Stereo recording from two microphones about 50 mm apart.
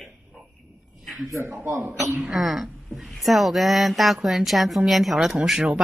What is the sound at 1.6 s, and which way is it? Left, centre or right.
Speech, right.